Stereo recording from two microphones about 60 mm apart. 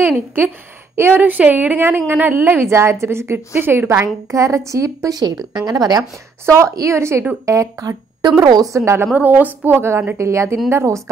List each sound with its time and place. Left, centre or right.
0.9 s a woman's voice: right
1.9 s a woman's voice: right
3.8 s a woman's voice: right
5.6 s speech: right
6.4 s a woman's voice: right
7.4 s a woman's voice: right
9.1 s a woman's voice: right
10.1 s a woman's voice: right